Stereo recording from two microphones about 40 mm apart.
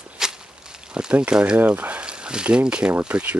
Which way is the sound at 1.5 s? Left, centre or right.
Right.